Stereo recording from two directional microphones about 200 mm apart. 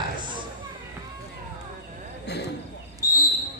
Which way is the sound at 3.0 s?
15° left (ahead or behind).